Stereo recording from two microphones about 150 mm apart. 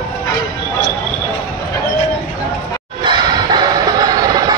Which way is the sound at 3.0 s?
30° right (ahead or behind).